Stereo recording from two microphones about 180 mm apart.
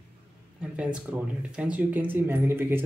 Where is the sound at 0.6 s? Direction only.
5° right (ahead or behind).